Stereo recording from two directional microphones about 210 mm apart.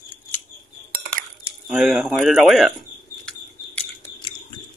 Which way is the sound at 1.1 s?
5° right (ahead or behind).